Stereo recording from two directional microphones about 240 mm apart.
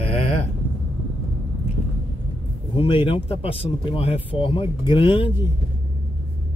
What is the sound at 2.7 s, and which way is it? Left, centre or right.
Speech, left.